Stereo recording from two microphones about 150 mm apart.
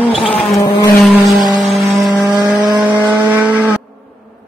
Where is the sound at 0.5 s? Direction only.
25° left (ahead or behind).